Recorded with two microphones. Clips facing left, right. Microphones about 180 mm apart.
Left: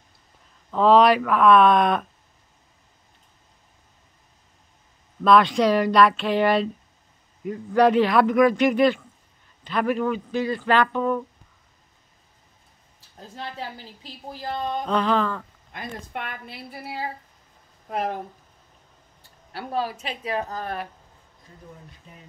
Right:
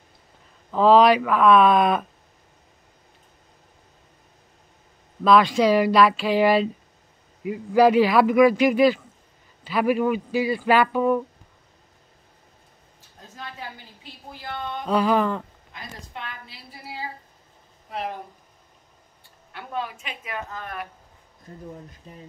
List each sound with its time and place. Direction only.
0.7 s a man's voice: centre (ahead or behind)
5.2 s a man's voice: centre (ahead or behind)
13.4 s a woman's voice: 35° left (ahead or behind)
14.9 s speech: 10° right (ahead or behind)
15.7 s a woman's voice: 55° left (ahead or behind)
17.8 s speech: 45° left (ahead or behind)
19.5 s a woman's voice: 35° left (ahead or behind)
22.0 s speech: 35° right (ahead or behind)